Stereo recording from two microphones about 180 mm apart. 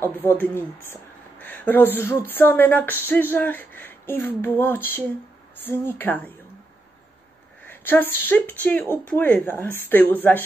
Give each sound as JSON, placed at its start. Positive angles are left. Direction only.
{"t": 0.0, "sound": "speech", "side_deg": 10}
{"t": 7.6, "sound": "speech", "side_deg": 10}